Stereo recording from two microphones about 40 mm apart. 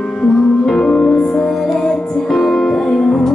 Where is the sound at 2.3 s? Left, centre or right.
Centre.